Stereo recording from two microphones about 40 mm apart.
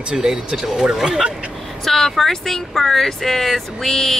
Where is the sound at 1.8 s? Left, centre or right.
Centre.